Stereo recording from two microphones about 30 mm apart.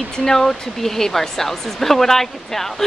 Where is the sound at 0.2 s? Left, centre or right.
Centre.